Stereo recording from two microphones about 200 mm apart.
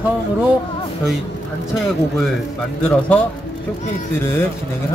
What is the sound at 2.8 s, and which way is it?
Speech, 5° left (ahead or behind).